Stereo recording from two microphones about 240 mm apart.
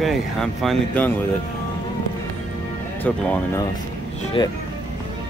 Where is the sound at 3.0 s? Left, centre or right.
Centre.